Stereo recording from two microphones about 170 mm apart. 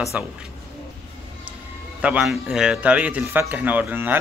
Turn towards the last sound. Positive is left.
turn(degrees=-10)  # may be behind; listen again after turning